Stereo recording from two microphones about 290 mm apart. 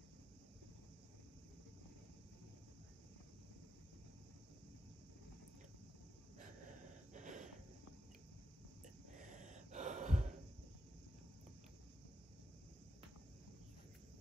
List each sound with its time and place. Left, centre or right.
7.2 s snort: right
9.3 s gasp: right